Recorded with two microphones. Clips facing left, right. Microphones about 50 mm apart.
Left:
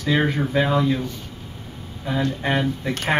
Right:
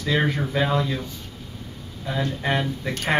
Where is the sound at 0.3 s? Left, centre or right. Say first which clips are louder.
Left 3 dB; centre.